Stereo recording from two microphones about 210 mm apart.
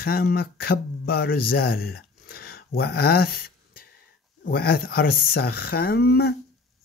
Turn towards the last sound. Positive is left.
turn(degrees=50)  # may be behind; listen again after turning